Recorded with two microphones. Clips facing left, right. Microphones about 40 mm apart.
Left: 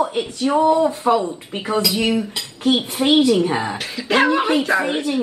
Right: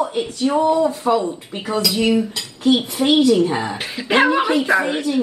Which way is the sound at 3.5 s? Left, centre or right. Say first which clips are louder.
Even; centre.